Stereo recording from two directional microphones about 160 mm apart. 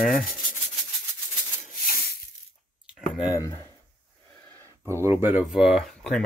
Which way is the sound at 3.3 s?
20° left (ahead or behind).